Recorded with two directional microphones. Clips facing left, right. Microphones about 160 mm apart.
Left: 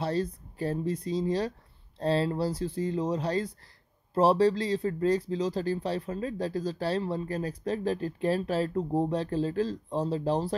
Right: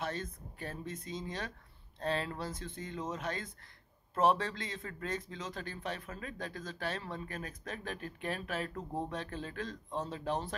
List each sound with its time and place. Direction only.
0.0 s speech: 35° left (ahead or behind)